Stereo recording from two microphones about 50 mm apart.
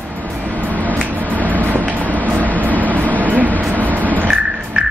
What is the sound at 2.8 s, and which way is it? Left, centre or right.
Vehicle, right.